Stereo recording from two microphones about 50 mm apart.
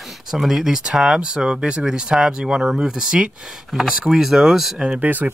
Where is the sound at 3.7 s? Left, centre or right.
Centre.